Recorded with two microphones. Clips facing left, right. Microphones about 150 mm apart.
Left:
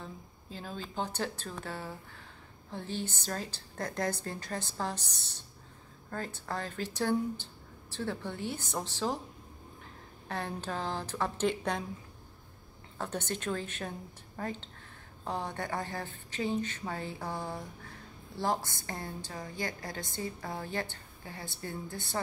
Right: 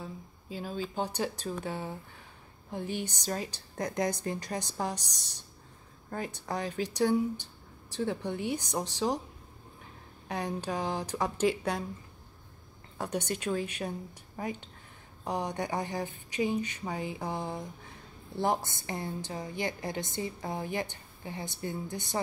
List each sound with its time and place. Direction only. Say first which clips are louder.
0.0 s a woman's voice: right 3 dB; 10° right (ahead or behind)
10.2 s a woman's voice: right 3 dB; 15° right (ahead or behind)
12.9 s a woman's voice: right 3 dB; 15° right (ahead or behind)